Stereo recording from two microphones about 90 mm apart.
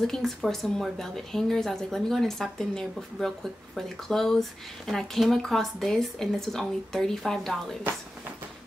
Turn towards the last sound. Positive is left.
turn(degrees=5)  # may be behind; listen again after turning